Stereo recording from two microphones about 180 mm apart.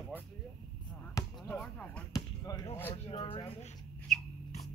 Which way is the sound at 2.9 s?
30° left (ahead or behind).